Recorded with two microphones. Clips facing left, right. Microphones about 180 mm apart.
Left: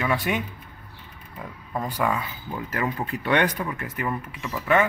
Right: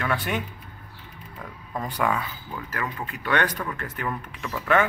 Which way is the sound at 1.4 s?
5° left (ahead or behind).